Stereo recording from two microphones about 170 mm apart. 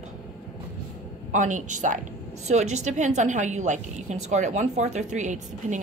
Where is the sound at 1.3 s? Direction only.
45° right (ahead or behind).